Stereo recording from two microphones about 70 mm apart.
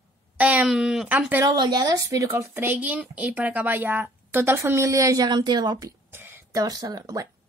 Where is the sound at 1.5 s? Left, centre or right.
Right.